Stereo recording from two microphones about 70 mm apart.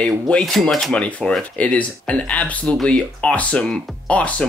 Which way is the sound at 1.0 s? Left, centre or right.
Centre.